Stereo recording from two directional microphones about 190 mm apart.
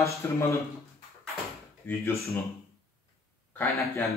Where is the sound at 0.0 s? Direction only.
15° left (ahead or behind).